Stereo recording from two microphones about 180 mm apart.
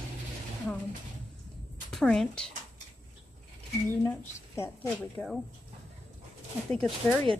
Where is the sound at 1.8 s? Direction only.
5° left (ahead or behind).